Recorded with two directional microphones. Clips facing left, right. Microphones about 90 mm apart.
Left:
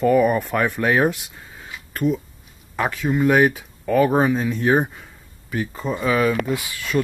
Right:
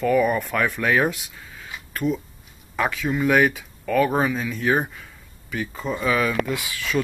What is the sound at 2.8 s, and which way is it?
Speech, 15° left (ahead or behind).